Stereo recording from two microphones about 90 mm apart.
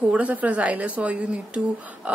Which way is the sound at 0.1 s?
15° right (ahead or behind).